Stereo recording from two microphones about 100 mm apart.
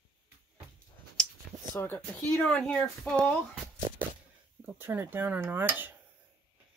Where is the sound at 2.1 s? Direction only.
15° left (ahead or behind).